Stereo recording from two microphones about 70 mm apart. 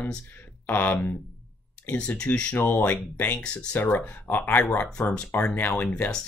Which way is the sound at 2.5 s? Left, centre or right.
Left.